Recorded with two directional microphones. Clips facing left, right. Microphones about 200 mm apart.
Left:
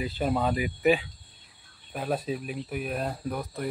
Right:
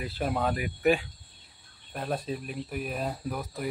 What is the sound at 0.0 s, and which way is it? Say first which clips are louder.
Speech: left 2 dB; centre (ahead or behind).